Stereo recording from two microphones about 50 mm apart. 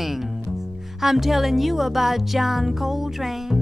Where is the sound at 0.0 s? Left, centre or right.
Centre.